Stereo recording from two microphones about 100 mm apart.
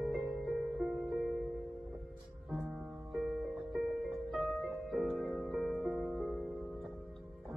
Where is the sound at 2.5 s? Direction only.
Centre (ahead or behind).